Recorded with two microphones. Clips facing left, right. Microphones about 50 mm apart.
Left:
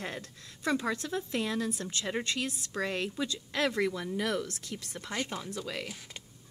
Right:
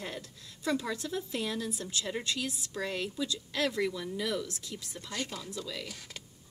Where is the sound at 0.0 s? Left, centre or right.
Left.